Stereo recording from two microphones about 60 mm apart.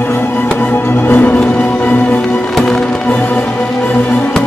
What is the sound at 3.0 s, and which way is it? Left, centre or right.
Music, left.